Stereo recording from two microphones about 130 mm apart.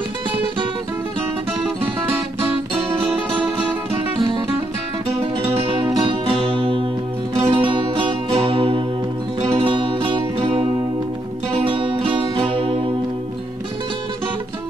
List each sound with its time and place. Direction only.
2.7 s music: 45° right (ahead or behind)